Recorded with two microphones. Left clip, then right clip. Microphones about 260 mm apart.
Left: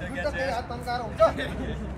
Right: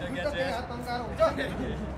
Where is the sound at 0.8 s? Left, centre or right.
Centre.